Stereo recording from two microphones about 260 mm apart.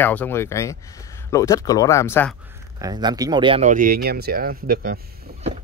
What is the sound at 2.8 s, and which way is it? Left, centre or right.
Speech, centre.